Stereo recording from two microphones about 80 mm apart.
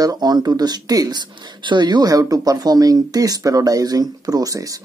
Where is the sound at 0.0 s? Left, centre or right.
Right.